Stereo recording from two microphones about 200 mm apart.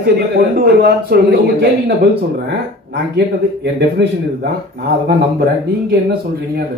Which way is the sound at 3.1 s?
55° right (ahead or behind).